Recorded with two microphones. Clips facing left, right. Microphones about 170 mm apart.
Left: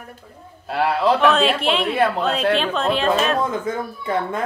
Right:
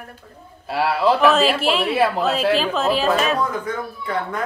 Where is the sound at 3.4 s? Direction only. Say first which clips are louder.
Left 1 dB; 25° left (ahead or behind).